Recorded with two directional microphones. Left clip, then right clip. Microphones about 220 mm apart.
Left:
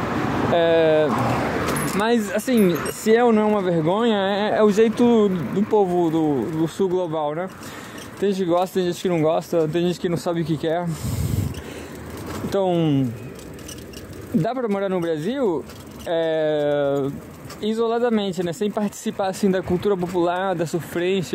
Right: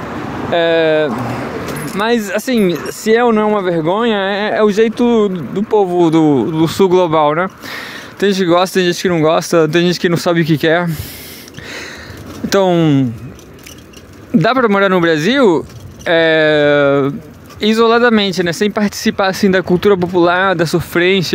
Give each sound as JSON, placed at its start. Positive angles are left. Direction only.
{"t": 0.5, "sound": "speech", "side_deg": -25}
{"t": 12.4, "sound": "speech", "side_deg": -25}
{"t": 14.4, "sound": "speech", "side_deg": -30}